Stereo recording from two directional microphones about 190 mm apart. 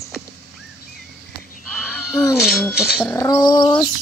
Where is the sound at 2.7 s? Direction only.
5° right (ahead or behind).